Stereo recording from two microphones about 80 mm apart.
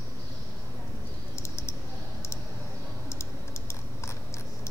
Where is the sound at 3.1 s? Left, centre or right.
Left.